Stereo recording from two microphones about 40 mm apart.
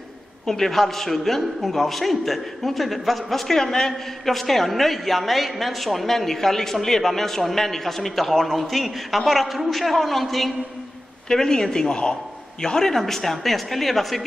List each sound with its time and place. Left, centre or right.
0.5 s a man's voice: centre
11.2 s a man's voice: centre